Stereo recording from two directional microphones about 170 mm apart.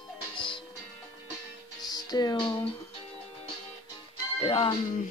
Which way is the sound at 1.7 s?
25° left (ahead or behind).